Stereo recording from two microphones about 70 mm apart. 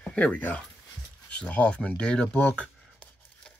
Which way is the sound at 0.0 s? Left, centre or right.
Centre.